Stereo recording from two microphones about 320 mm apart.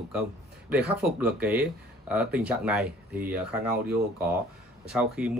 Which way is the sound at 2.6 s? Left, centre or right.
Centre.